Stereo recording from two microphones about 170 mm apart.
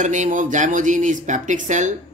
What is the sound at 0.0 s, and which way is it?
Speech, 45° right (ahead or behind).